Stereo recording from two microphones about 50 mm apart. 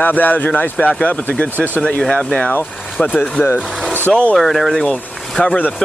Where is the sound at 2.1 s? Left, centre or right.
Centre.